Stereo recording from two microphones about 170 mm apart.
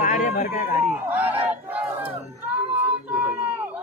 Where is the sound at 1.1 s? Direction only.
10° right (ahead or behind).